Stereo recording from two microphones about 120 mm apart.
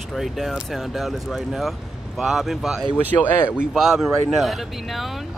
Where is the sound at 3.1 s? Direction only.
20° left (ahead or behind).